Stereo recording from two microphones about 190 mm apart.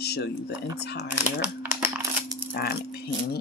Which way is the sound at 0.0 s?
60° left (ahead or behind).